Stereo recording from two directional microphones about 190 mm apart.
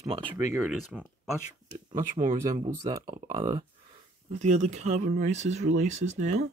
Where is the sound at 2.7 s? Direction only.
20° right (ahead or behind).